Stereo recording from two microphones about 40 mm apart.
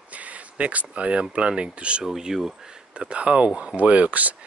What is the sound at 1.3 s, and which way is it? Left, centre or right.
Speech, right.